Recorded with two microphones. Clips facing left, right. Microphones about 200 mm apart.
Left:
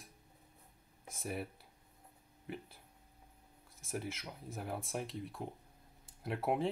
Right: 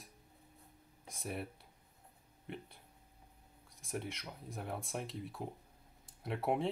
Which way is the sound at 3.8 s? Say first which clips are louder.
Left 1 dB; centre (ahead or behind).